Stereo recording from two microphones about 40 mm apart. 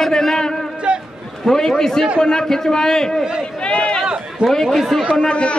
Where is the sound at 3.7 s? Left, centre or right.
Left.